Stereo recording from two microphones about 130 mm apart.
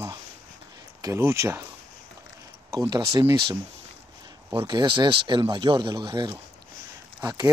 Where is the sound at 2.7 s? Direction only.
30° right (ahead or behind).